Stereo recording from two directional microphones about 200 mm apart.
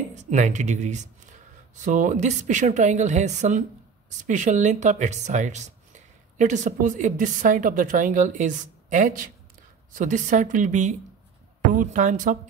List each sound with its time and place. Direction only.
0.1 s speech: 35° right (ahead or behind)